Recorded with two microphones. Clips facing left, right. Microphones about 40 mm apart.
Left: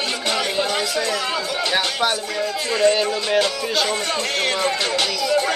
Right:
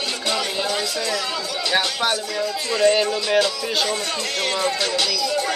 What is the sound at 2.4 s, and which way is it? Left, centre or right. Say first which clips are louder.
Speech: left 2 dB; left.